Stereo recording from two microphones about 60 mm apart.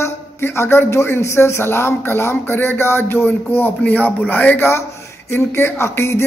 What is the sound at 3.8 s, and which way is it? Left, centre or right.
A man's voice, left.